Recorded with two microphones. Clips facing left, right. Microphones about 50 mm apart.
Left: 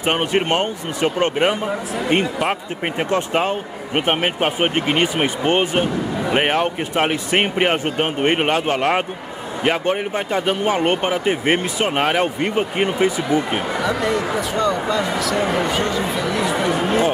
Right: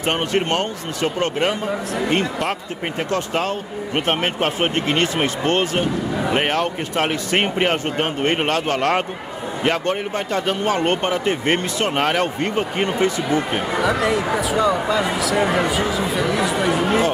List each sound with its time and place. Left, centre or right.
0.0 s speech: centre
14.0 s speech: centre